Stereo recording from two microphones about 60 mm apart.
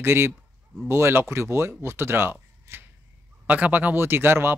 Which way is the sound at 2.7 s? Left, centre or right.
Right.